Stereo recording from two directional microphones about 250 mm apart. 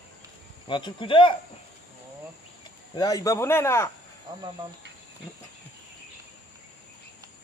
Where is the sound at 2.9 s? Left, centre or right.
Centre.